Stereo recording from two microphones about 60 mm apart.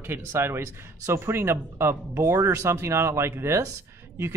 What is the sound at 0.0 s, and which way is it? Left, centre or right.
A woman's voice, right.